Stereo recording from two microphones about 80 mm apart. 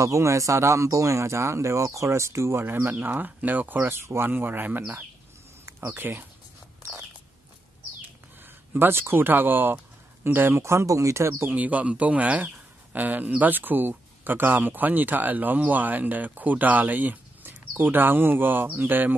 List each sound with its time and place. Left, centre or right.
0.0 s speech: right
3.8 s speech: right
8.7 s speech: right
11.5 s speech: centre